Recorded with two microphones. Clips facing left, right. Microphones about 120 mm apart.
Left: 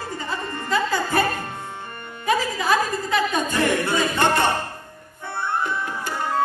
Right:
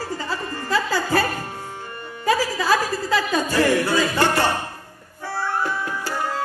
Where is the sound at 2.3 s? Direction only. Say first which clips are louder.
Right 1 dB; 20° left (ahead or behind).